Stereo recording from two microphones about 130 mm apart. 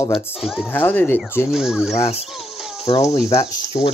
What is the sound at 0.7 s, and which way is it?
Speech, 15° left (ahead or behind).